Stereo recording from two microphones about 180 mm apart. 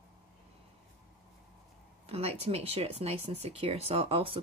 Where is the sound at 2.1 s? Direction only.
35° right (ahead or behind).